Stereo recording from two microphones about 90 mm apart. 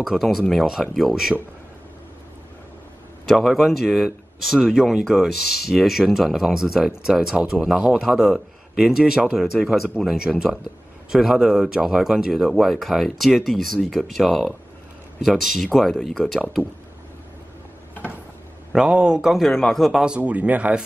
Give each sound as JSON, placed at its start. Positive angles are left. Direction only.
{"t": 0.0, "sound": "speech", "side_deg": 0}
{"t": 3.3, "sound": "speech", "side_deg": 0}
{"t": 18.7, "sound": "speech", "side_deg": -10}
{"t": 20.2, "sound": "speech", "side_deg": -15}